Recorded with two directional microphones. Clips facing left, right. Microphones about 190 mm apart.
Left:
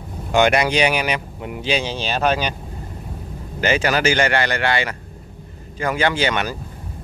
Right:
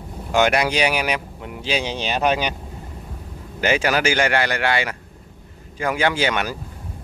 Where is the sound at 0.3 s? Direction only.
5° right (ahead or behind).